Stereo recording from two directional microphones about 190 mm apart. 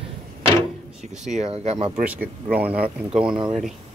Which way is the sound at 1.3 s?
35° right (ahead or behind).